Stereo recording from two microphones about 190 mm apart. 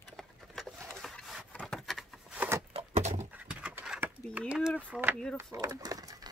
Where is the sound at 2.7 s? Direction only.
30° right (ahead or behind).